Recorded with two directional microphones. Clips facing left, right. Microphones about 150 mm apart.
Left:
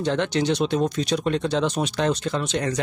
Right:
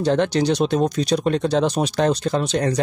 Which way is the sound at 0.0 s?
40° right (ahead or behind).